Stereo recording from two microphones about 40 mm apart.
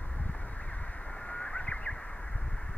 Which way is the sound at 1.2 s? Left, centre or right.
Left.